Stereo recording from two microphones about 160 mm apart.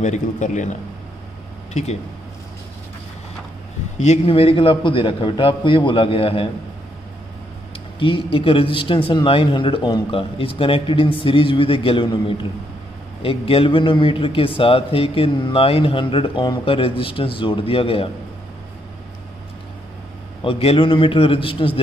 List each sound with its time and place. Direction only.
0.0 s a man's voice: 50° left (ahead or behind)
1.7 s speech: 45° left (ahead or behind)
4.0 s a man's voice: 40° left (ahead or behind)
7.7 s a man's voice: 35° left (ahead or behind)
20.4 s a man's voice: 35° left (ahead or behind)